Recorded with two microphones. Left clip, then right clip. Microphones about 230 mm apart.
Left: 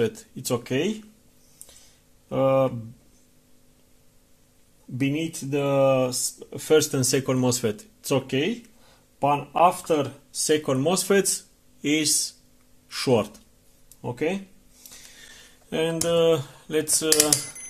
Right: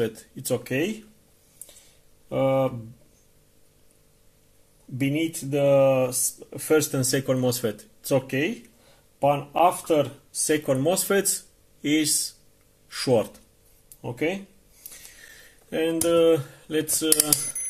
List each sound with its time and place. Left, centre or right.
0.0 s speech: left
2.2 s speech: left
5.0 s speech: left
15.1 s speech: left